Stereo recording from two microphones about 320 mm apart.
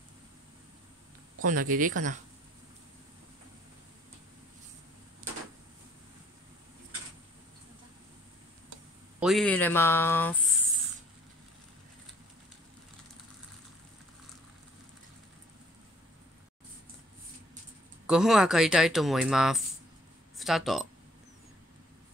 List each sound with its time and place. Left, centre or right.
1.4 s speech: right
9.2 s speech: centre
18.0 s speech: centre